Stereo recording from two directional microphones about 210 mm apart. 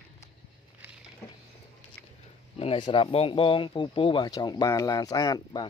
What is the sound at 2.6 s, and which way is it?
Speech, 25° left (ahead or behind).